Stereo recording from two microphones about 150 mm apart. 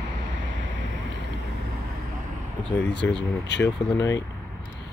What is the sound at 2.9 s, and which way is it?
Speech, 5° left (ahead or behind).